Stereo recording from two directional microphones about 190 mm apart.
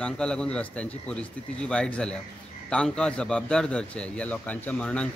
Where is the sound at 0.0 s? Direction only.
5° left (ahead or behind).